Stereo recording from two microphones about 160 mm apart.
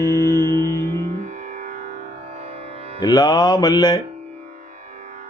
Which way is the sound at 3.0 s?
25° left (ahead or behind).